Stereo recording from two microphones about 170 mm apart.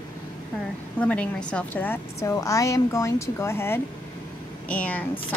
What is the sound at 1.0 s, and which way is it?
A woman's voice, 5° left (ahead or behind).